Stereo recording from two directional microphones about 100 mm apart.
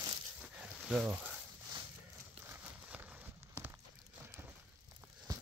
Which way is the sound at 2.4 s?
20° right (ahead or behind).